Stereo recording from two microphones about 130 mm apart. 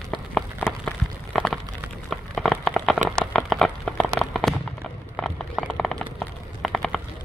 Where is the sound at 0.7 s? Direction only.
5° left (ahead or behind).